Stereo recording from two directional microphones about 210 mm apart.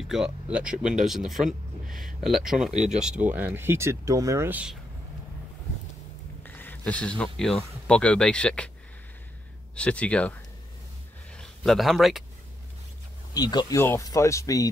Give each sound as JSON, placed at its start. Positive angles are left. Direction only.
{"t": 0.1, "sound": "speech", "side_deg": -5}
{"t": 2.7, "sound": "speech", "side_deg": -35}
{"t": 3.0, "sound": "speech", "side_deg": -5}
{"t": 6.4, "sound": "speech", "side_deg": 10}
{"t": 9.8, "sound": "speech", "side_deg": 5}
{"t": 13.3, "sound": "speech", "side_deg": 20}